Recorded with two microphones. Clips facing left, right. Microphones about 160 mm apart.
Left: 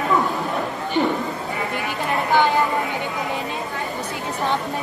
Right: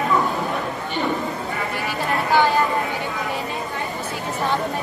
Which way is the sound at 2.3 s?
20° left (ahead or behind).